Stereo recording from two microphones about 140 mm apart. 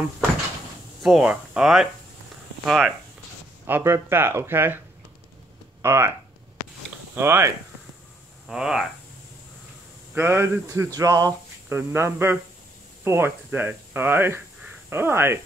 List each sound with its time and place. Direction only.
1.0 s speech: 5° right (ahead or behind)
3.6 s speech: 15° right (ahead or behind)
5.8 s speech: 20° right (ahead or behind)
7.2 s speech: 20° right (ahead or behind)
8.5 s speech: 5° right (ahead or behind)
10.1 s speech: 15° right (ahead or behind)